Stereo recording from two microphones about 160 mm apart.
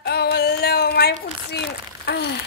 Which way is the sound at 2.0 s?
90° left.